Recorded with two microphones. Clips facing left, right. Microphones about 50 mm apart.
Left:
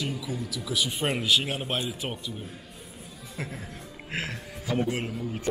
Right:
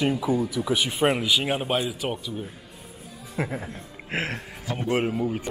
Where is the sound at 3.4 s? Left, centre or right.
Right.